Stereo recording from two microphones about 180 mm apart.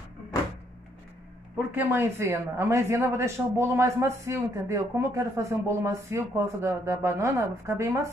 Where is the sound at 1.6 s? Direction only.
10° right (ahead or behind).